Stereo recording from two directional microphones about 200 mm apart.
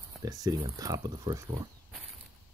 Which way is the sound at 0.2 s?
15° right (ahead or behind).